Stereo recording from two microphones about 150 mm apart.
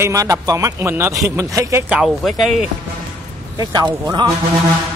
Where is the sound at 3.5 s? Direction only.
25° right (ahead or behind).